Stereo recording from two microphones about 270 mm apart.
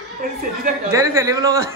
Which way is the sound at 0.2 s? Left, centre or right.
Right.